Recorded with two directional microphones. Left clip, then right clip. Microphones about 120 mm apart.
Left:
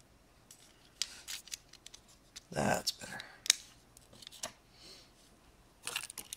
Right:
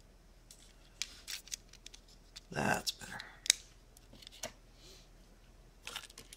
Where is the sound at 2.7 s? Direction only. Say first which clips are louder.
Left 2 dB; 15° right (ahead or behind).